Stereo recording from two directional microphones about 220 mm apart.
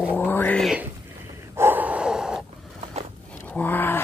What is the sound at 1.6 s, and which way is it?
Snort, 10° right (ahead or behind).